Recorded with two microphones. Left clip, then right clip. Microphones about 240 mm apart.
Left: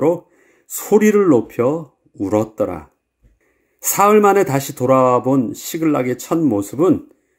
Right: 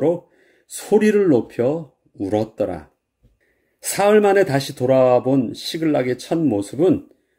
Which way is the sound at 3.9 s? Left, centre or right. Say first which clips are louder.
Left 3 dB; centre.